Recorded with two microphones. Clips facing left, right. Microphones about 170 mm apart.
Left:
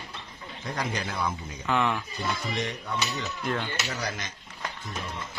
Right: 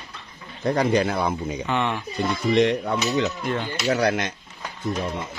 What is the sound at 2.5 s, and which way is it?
Cutlery, 70° right (ahead or behind).